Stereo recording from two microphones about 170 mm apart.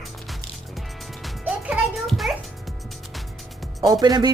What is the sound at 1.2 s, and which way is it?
Music, centre (ahead or behind).